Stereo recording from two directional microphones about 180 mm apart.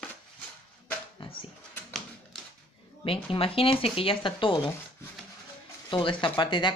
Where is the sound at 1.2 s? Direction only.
30° left (ahead or behind).